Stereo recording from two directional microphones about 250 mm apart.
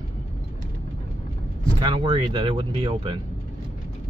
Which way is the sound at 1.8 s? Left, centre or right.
Centre.